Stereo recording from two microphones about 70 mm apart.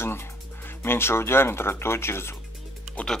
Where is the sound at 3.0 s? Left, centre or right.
Left.